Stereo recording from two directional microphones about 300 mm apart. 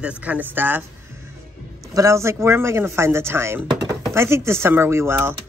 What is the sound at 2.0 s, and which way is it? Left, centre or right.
A woman's voice, centre.